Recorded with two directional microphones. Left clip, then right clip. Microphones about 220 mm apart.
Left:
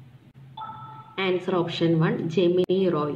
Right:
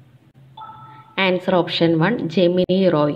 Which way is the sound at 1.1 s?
35° right (ahead or behind).